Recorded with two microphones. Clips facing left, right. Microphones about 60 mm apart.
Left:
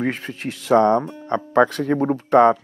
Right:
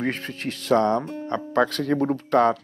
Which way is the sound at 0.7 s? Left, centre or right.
Left.